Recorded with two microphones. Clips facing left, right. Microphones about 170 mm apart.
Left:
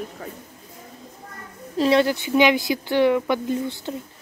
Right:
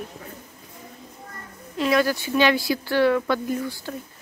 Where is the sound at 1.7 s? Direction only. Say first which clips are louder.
Left 3 dB; 30° left (ahead or behind).